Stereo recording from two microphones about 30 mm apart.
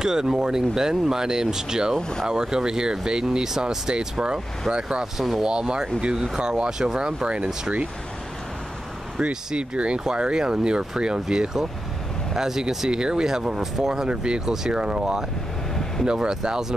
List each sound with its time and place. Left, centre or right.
0.0 s speech: right
2.0 s speech: left
2.2 s speech: right
9.6 s speech: right; by 14.0 s centre
14.0 s speech: right